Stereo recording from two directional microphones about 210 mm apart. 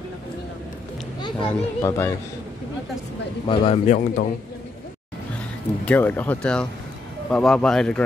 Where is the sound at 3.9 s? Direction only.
40° left (ahead or behind).